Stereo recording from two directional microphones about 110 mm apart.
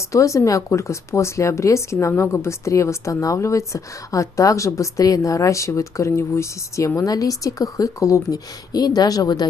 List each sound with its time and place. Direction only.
0.1 s speech: 30° left (ahead or behind)